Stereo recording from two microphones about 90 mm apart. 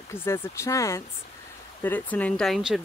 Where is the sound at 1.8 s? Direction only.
20° left (ahead or behind).